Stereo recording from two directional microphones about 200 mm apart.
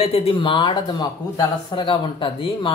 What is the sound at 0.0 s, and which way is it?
Speech, 30° left (ahead or behind).